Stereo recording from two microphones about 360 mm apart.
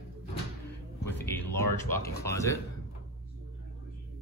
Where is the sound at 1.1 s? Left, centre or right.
Centre.